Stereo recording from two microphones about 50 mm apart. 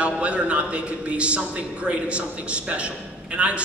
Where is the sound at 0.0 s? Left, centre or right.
Right.